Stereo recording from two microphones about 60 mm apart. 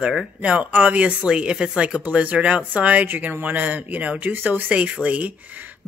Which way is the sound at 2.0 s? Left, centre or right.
Right.